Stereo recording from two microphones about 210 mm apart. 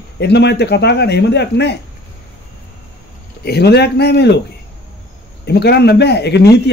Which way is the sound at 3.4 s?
50° left (ahead or behind).